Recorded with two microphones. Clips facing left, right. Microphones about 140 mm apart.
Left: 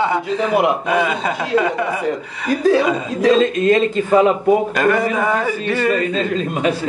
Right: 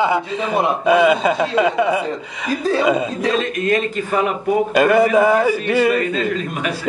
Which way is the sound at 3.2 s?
25° left (ahead or behind).